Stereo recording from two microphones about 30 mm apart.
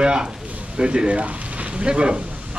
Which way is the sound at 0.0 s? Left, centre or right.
Right.